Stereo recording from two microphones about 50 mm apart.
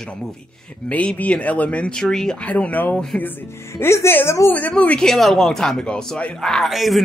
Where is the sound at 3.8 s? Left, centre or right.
Left.